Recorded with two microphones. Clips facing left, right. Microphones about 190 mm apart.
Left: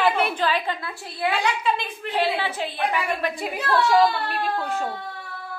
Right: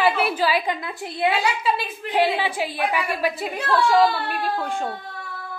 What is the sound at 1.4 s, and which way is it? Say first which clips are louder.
A woman's voice: right 1 dB; 5° right (ahead or behind).